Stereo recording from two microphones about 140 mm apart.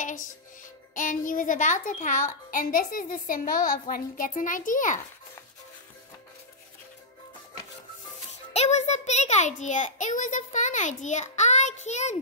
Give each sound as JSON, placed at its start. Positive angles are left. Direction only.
{"t": 0.0, "sound": "music", "side_deg": 65}
{"t": 0.9, "sound": "a child's voice", "side_deg": 70}
{"t": 3.9, "sound": "a child's voice", "side_deg": 75}
{"t": 8.3, "sound": "a child's voice", "side_deg": 55}